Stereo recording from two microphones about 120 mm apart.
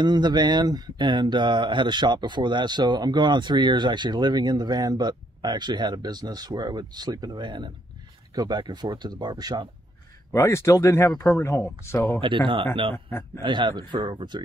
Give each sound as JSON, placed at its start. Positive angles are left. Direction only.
{"t": 0.0, "sound": "speech", "side_deg": -35}
{"t": 10.3, "sound": "speech", "side_deg": 25}
{"t": 12.2, "sound": "speech", "side_deg": -45}
{"t": 12.9, "sound": "speech", "side_deg": 20}
{"t": 13.4, "sound": "speech", "side_deg": -40}